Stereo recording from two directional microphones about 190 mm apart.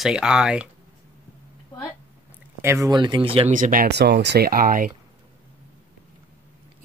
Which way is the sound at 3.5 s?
45° right (ahead or behind).